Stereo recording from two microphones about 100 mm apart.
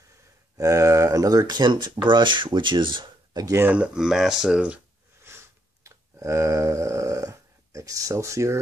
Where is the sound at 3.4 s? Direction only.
25° right (ahead or behind).